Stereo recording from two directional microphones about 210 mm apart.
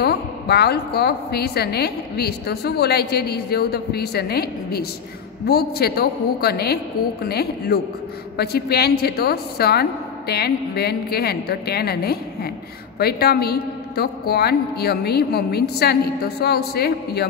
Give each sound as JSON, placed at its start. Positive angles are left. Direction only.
{"t": 0.0, "sound": "a woman's voice", "side_deg": 50}